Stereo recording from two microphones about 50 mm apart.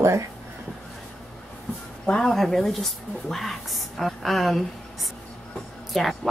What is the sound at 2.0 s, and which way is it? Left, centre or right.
Speech, centre.